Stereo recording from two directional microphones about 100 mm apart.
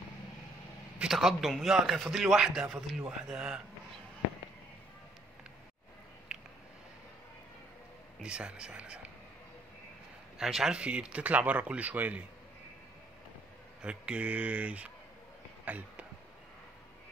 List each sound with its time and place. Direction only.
0.9 s a man's voice: 5° right (ahead or behind)
8.2 s speech: 10° right (ahead or behind)
10.4 s speech: 5° right (ahead or behind)
13.8 s speech: 10° right (ahead or behind)
15.6 s a sound: 15° right (ahead or behind)